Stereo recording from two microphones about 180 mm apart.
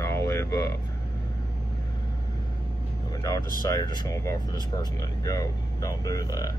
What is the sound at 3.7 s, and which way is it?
Speech, 20° left (ahead or behind).